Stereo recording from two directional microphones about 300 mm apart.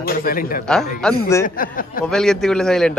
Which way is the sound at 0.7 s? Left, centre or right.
Centre.